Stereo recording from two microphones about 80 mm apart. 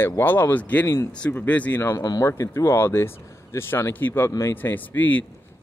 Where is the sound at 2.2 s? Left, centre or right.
Left.